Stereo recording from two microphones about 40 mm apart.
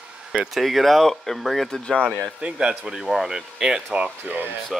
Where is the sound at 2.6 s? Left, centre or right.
Right.